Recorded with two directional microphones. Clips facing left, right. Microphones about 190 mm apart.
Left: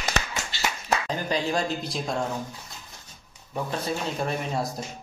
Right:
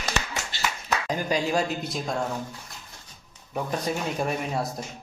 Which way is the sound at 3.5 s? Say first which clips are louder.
Right 1 dB; 15° right (ahead or behind).